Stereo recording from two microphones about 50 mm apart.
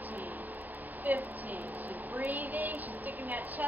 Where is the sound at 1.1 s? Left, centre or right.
Right.